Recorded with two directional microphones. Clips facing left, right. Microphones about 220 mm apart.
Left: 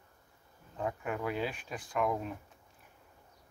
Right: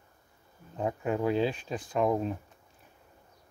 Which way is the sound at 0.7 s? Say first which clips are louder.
Right 6 dB; 25° right (ahead or behind).